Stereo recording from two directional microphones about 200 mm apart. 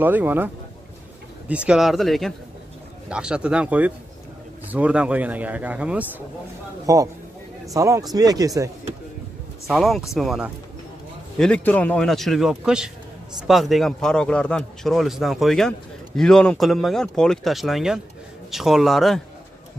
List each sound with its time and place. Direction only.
0.0 s speech: 10° right (ahead or behind)
1.5 s a man's voice: 5° right (ahead or behind)
9.7 s a man's voice: centre (ahead or behind)